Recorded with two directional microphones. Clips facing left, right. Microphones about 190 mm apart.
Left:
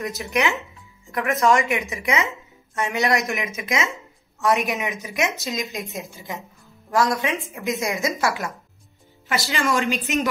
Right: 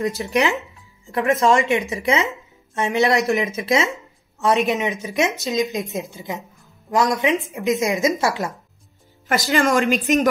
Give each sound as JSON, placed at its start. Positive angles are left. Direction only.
{"t": 0.0, "sound": "a woman's voice", "side_deg": -30}
{"t": 9.5, "sound": "a woman's voice", "side_deg": -50}